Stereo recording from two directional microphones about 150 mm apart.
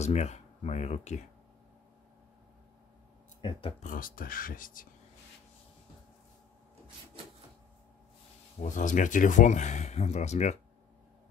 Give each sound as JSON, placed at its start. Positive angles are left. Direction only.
{"t": 0.0, "sound": "speech", "side_deg": 45}
{"t": 3.4, "sound": "speech", "side_deg": 35}
{"t": 3.8, "sound": "speech", "side_deg": 65}
{"t": 8.5, "sound": "speech", "side_deg": 55}